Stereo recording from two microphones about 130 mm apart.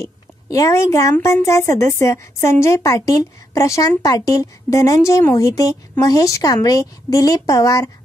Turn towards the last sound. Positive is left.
turn(degrees=25)  # may be behind; listen again after turning